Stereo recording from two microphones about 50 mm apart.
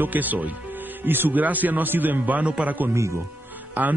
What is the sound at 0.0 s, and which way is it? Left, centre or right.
A man's voice, right.